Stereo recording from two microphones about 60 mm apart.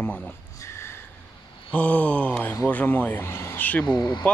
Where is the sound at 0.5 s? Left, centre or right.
Left.